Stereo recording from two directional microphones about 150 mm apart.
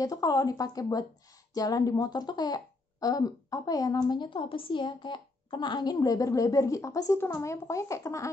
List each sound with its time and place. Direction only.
0.0 s speech: 25° left (ahead or behind)